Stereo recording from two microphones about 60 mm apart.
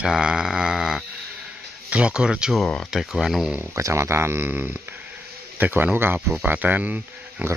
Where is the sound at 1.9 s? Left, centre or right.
Centre.